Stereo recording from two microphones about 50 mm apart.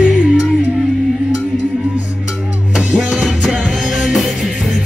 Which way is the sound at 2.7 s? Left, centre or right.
Centre.